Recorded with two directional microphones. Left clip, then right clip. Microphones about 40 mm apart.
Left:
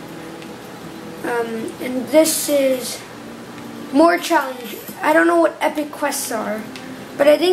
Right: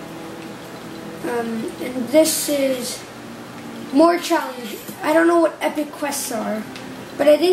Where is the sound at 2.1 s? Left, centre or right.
Left.